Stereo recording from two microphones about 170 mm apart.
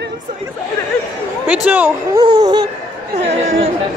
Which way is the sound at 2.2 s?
25° right (ahead or behind).